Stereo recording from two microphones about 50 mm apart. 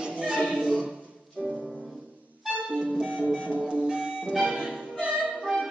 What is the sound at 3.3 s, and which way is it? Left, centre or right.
Music, right.